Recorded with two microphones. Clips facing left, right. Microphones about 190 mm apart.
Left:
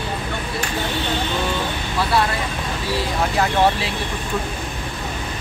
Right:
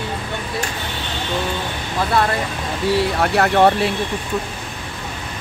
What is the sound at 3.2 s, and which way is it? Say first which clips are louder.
Speech: right 3 dB; 65° right (ahead or behind).